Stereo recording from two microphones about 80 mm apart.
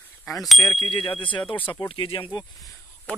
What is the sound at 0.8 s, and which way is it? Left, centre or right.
Speech, left.